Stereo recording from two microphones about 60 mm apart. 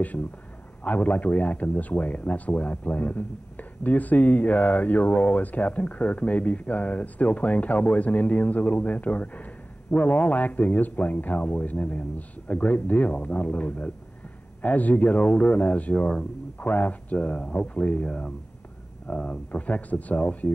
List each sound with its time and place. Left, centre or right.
0.8 s speech: left